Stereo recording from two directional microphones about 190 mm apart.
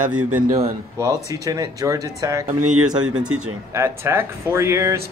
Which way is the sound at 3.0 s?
5° right (ahead or behind).